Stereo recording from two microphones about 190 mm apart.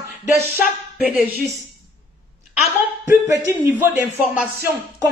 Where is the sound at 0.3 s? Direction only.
5° right (ahead or behind).